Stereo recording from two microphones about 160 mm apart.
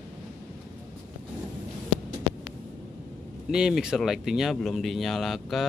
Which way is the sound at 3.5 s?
5° right (ahead or behind).